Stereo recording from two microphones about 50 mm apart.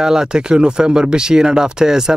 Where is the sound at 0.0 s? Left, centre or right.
Centre.